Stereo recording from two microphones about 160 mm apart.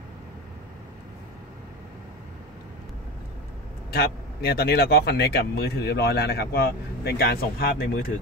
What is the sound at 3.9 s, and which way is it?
Speech, 90° left.